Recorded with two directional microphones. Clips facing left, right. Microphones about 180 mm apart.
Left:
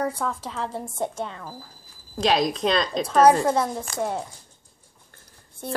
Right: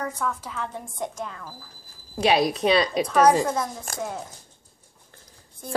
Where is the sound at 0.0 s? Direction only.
30° left (ahead or behind).